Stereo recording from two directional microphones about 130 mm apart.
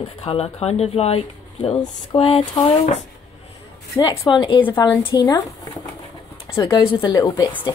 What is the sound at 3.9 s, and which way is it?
Speech, 25° left (ahead or behind).